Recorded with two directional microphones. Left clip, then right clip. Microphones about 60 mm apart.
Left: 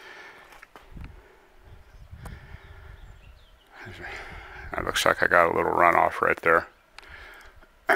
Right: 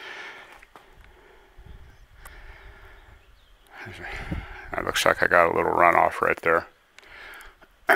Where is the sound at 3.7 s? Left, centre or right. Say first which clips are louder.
Right 3 dB; right.